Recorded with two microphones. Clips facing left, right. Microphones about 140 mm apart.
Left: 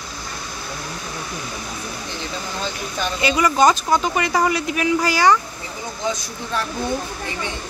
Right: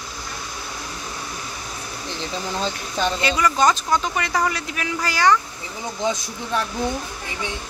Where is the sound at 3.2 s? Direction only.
10° left (ahead or behind).